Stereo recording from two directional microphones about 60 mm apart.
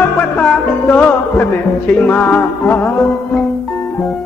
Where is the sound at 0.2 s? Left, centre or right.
Left.